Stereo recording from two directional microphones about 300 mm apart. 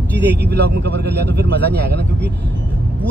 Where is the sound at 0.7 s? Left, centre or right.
Right.